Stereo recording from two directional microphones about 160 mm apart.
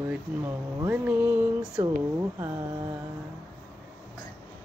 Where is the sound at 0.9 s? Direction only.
10° right (ahead or behind).